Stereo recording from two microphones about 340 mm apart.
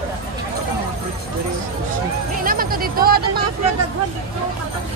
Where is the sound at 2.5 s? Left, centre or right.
Right.